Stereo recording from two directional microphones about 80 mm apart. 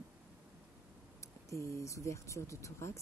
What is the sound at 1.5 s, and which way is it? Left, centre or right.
Speech, left.